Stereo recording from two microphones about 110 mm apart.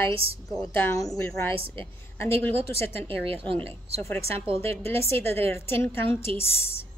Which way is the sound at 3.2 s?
55° right (ahead or behind).